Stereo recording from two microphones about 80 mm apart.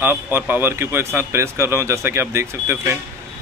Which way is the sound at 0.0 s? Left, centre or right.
Right.